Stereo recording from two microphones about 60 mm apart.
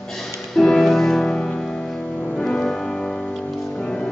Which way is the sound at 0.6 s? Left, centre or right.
Centre.